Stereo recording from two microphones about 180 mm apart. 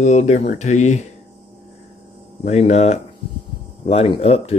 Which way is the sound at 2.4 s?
35° left (ahead or behind).